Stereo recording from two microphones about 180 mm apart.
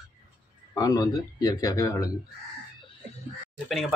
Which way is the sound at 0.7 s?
20° left (ahead or behind).